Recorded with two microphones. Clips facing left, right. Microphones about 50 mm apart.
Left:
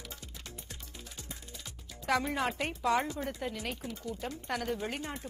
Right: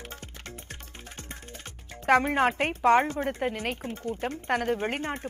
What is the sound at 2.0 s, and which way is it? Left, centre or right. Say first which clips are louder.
A woman's voice: right 9 dB; right.